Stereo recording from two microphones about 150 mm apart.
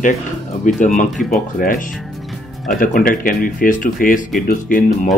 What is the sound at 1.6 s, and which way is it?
Speech, 70° left (ahead or behind).